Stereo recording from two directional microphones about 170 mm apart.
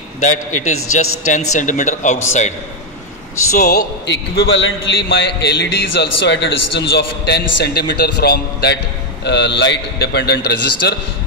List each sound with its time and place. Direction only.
0.2 s a man's voice: 45° left (ahead or behind)
3.5 s a man's voice: 70° left (ahead or behind)
9.2 s a man's voice: 90° left